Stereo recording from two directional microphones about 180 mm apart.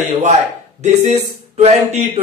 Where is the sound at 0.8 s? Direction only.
40° right (ahead or behind).